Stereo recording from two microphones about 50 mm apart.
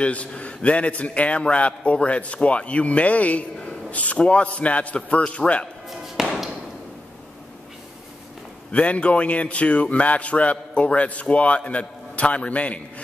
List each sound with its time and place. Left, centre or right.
0.0 s a man's voice: left
5.9 s basketball bounce: centre
8.7 s a man's voice: left